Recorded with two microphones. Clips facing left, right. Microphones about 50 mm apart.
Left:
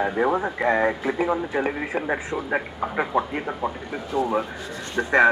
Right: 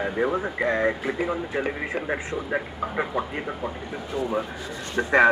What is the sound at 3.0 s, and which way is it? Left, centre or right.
Speech, centre.